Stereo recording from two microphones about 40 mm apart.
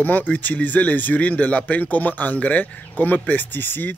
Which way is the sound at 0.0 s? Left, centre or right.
Left.